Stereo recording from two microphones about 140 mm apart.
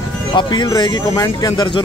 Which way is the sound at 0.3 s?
35° left (ahead or behind).